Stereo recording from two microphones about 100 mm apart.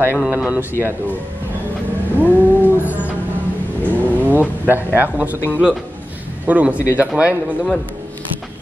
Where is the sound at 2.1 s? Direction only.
20° right (ahead or behind).